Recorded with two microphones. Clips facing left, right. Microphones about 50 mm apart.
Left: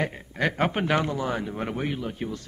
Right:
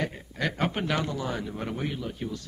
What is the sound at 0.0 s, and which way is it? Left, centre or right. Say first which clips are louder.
A man's voice: left 4 dB; left.